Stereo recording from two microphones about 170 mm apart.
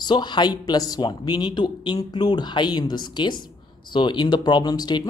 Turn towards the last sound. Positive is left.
turn(degrees=25)  # may be behind; listen again after turning